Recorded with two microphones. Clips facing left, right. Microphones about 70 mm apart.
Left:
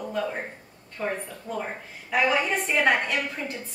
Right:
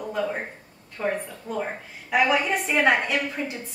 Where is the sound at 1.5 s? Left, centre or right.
Centre.